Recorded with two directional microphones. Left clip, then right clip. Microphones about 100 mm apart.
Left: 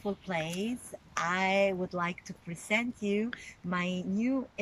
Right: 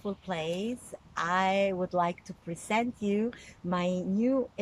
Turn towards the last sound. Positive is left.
turn(degrees=-45)  # may be behind; listen again after turning